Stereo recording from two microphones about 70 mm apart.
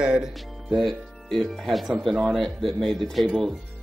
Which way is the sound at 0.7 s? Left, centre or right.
Centre.